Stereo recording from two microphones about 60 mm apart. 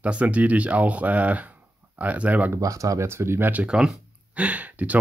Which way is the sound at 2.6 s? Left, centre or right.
Right.